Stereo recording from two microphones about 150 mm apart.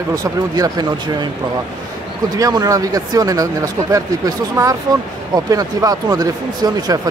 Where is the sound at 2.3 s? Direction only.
25° right (ahead or behind).